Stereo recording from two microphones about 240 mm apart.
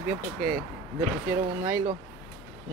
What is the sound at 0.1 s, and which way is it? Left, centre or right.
Speech, centre.